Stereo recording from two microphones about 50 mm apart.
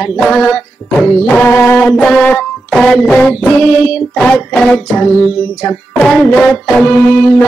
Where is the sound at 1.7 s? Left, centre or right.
Left.